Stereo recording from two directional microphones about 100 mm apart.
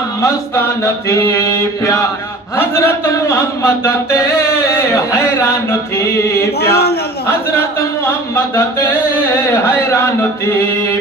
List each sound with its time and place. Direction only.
0.2 s male singing: 30° left (ahead or behind)
8.5 s male singing: 30° left (ahead or behind)